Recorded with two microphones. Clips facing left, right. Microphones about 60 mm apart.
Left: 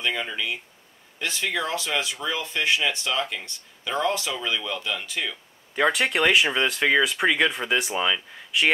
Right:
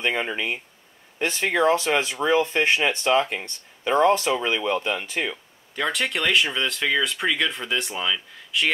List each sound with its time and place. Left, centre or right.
0.0 s speech: right
5.9 s speech: centre